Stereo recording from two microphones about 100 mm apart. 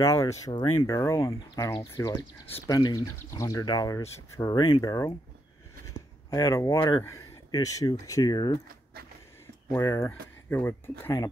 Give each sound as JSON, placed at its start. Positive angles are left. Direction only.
{"t": 0.0, "sound": "speech", "side_deg": 30}
{"t": 0.5, "sound": "speech", "side_deg": 50}
{"t": 0.8, "sound": "speech", "side_deg": 30}
{"t": 4.0, "sound": "speech", "side_deg": 30}
{"t": 4.6, "sound": "speech", "side_deg": 45}
{"t": 9.7, "sound": "speech", "side_deg": 25}